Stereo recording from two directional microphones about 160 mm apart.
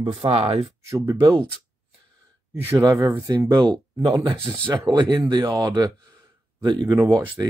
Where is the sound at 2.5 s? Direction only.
15° right (ahead or behind).